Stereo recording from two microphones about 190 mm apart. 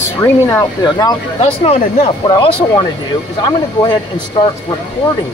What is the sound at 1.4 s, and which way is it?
Speech, 35° left (ahead or behind).